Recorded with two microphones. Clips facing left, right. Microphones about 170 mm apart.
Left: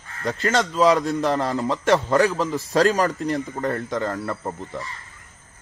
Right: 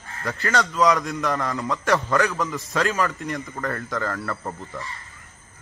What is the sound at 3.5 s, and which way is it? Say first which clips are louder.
Speech: left 4 dB; 25° left (ahead or behind).